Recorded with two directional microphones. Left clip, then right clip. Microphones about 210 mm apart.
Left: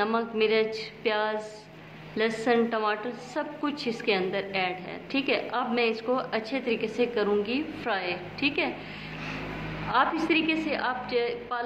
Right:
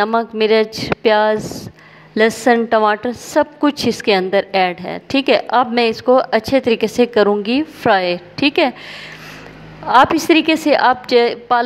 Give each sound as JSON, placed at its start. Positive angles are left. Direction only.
{"t": 0.0, "sound": "a woman's voice", "side_deg": -50}
{"t": 9.8, "sound": "a woman's voice", "side_deg": -50}